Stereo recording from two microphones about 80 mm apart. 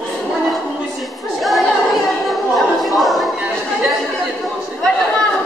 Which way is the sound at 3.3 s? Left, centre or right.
Centre.